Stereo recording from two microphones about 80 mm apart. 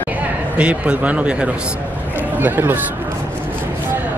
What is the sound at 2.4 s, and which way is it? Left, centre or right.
Speech, right.